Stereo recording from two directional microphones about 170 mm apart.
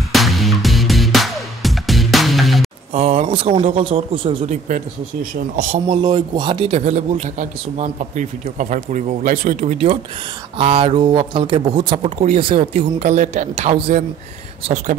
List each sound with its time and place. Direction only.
0.1 s music: centre (ahead or behind)
2.9 s speech: 35° right (ahead or behind)
4.5 s speech: 50° right (ahead or behind)
5.9 s speech: 25° right (ahead or behind); by 9.8 s 50° right (ahead or behind)
10.6 s speech: 30° right (ahead or behind)